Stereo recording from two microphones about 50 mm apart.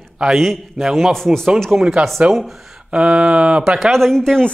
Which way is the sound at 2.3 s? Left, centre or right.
Centre.